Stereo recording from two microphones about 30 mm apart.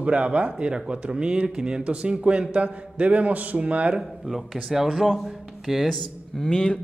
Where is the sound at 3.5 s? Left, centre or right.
Right.